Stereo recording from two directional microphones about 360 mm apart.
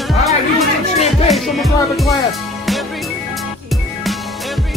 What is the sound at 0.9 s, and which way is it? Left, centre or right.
Music, centre.